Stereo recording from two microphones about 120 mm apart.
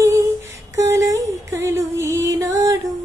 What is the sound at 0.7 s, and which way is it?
Music, 25° right (ahead or behind).